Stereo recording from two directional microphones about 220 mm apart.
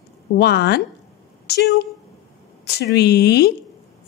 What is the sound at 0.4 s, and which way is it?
Speech, 50° left (ahead or behind).